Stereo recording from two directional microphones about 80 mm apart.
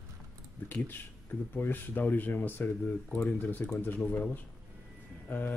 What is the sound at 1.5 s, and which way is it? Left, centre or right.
Speech, left.